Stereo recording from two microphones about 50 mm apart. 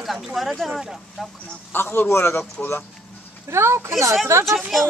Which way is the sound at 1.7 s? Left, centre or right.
Left.